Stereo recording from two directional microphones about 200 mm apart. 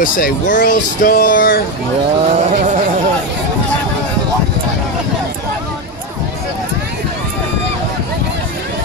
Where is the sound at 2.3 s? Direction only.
35° right (ahead or behind).